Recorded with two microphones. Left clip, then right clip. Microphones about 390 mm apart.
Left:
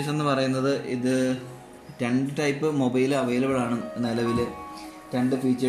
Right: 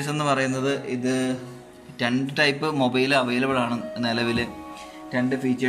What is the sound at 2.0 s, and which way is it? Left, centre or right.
Speech, right.